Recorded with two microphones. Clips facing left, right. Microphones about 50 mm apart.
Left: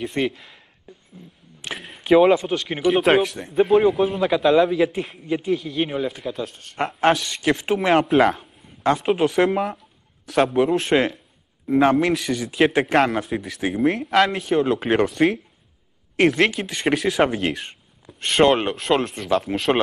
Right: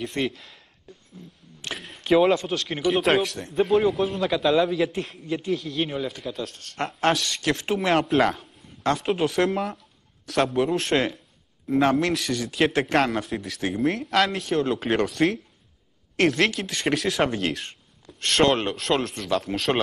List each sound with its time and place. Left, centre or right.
0.0 s speech: centre
0.9 s a sound: centre
2.0 s a man's voice: centre